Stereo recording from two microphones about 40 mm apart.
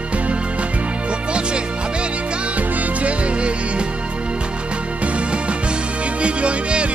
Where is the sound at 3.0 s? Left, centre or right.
Right.